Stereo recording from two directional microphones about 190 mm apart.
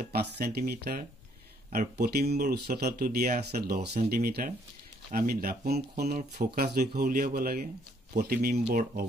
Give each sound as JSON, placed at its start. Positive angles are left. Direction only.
{"t": 0.0, "sound": "speech", "side_deg": -55}